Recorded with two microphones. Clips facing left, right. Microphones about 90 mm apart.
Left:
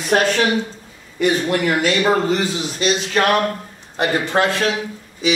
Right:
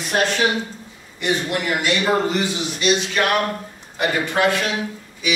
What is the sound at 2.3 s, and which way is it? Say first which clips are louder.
Speech: left 2 dB; 35° left (ahead or behind).